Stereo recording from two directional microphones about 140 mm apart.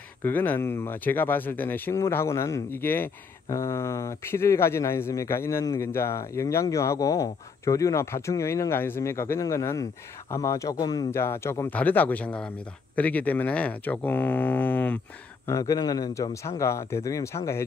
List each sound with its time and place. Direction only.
0.2 s speech: 15° left (ahead or behind)
15.4 s speech: 20° left (ahead or behind)